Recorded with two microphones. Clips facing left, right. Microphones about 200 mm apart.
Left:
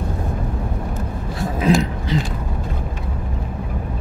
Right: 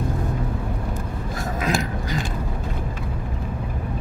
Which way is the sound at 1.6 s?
25° left (ahead or behind).